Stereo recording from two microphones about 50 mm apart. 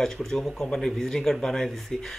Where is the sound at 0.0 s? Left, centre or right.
Centre.